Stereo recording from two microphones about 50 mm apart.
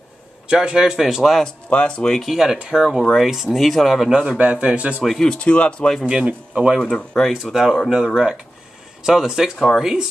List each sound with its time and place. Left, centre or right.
0.5 s speech: centre
1.7 s speech: left
2.1 s speech: centre
4.1 s speech: centre
4.4 s speech: right
5.2 s speech: centre
6.0 s speech: centre
6.8 s speech: centre
7.9 s speech: centre